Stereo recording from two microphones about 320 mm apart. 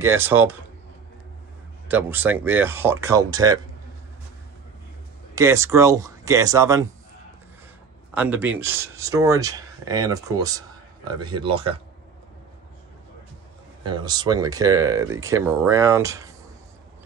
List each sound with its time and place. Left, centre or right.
0.0 s speech: centre
1.9 s speech: centre
5.3 s speech: centre
8.1 s speech: centre
13.8 s speech: centre